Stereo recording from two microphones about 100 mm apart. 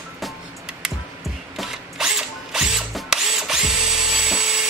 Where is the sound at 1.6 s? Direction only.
5° right (ahead or behind).